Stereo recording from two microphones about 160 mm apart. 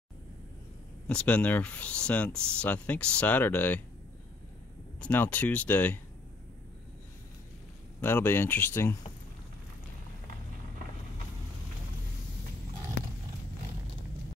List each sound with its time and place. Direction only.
1.0 s speech: 5° left (ahead or behind)
5.0 s speech: 10° left (ahead or behind)
8.0 s speech: 15° left (ahead or behind)